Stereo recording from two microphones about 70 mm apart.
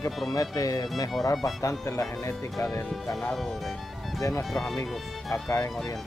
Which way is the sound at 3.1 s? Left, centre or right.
Centre.